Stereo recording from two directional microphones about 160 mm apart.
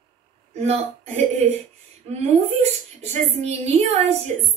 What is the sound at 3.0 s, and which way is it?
A woman's voice, 40° right (ahead or behind).